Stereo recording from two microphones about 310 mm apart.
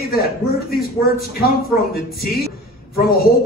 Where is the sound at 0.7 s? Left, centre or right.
Left.